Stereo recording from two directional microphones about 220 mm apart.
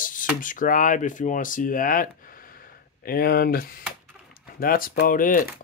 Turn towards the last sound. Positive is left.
turn(degrees=40)  # may be behind; listen again after turning